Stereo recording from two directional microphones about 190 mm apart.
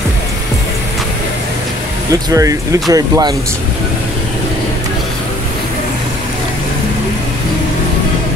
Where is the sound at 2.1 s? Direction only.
15° right (ahead or behind).